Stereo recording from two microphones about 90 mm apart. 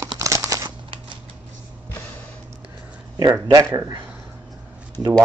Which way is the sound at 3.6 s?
35° right (ahead or behind).